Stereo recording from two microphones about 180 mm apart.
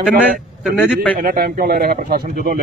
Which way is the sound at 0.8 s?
10° left (ahead or behind).